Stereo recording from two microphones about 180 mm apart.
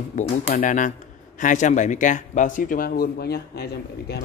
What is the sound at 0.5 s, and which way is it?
A man's voice, 50° left (ahead or behind).